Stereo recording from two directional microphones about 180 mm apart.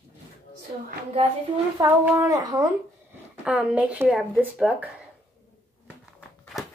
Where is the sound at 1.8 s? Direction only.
20° right (ahead or behind).